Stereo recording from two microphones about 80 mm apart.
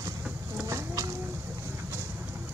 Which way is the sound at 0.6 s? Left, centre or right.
Right.